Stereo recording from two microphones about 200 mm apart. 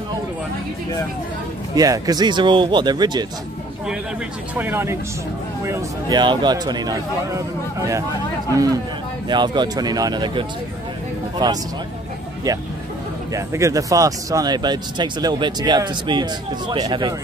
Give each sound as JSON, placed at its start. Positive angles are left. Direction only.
{"t": 1.8, "sound": "speech", "side_deg": -20}
{"t": 4.6, "sound": "speech", "side_deg": -10}
{"t": 9.3, "sound": "speech", "side_deg": -20}